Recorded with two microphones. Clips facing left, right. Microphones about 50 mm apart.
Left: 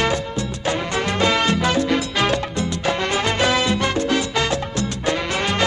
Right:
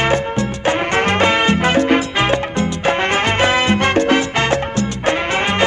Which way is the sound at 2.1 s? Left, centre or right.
Right.